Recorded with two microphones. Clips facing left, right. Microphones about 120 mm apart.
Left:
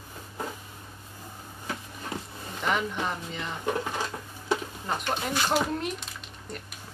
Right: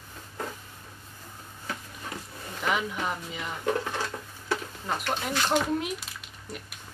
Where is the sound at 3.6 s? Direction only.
15° left (ahead or behind).